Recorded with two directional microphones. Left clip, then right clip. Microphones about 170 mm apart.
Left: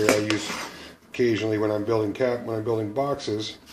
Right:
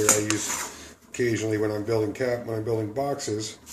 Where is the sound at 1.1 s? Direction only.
35° left (ahead or behind).